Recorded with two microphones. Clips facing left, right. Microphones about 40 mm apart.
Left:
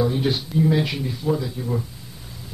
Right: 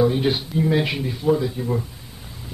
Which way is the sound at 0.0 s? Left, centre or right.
Centre.